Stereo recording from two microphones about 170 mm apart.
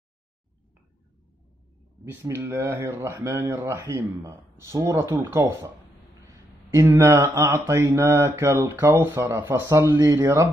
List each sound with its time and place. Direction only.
2.0 s speech: 15° right (ahead or behind)